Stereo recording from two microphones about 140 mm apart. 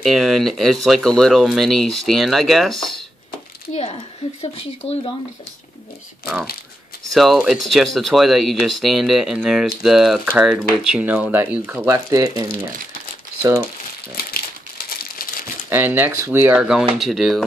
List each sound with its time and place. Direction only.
0.0 s speech: centre (ahead or behind)
3.7 s a woman's voice: 45° left (ahead or behind)
7.1 s speech: centre (ahead or behind); by 13.7 s 25° right (ahead or behind)
15.0 s crumpling: 90° left
15.7 s speech: 15° right (ahead or behind)